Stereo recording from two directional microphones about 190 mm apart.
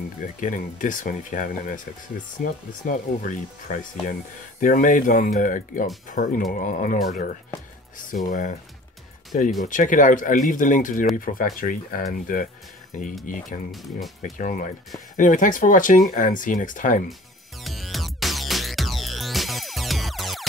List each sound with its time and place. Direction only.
0.4 s speech: 45° left (ahead or behind)
13.7 s speech: centre (ahead or behind)
15.1 s speech: 45° left (ahead or behind)
17.6 s music: centre (ahead or behind)